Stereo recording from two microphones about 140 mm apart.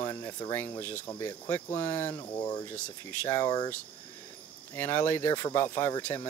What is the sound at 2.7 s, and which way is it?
Speech, 15° left (ahead or behind).